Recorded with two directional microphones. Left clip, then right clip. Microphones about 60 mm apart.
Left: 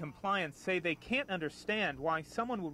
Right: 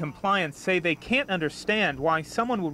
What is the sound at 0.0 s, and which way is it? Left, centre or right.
Speech, left.